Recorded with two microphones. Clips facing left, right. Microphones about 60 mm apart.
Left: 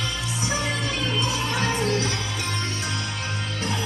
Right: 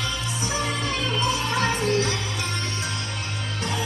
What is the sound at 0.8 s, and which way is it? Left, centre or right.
Music, right.